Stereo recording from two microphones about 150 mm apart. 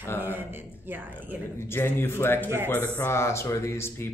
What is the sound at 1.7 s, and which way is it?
Speech, 15° left (ahead or behind).